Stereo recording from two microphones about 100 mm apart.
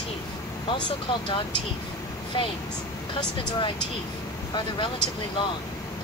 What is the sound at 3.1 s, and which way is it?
Speech, 55° left (ahead or behind).